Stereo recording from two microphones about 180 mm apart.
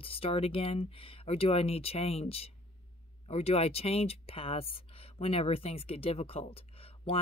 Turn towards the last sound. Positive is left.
turn(degrees=30)  # may be behind; listen again after turning